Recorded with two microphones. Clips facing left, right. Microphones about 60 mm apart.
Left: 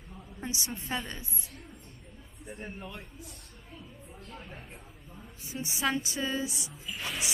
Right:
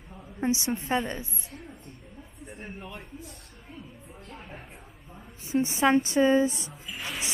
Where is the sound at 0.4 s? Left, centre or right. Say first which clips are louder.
Right 10 dB; right.